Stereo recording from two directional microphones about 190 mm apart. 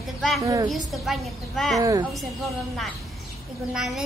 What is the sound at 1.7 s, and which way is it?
Speech, 15° right (ahead or behind).